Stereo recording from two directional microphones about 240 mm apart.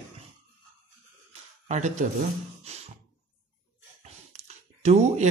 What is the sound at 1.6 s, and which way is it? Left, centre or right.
Speech, right.